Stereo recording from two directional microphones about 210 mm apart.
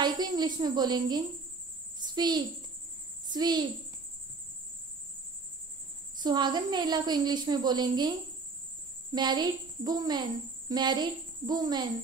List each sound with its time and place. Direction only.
0.0 s a woman's voice: 20° right (ahead or behind)
6.2 s a woman's voice: 20° right (ahead or behind)
9.1 s a woman's voice: 20° right (ahead or behind)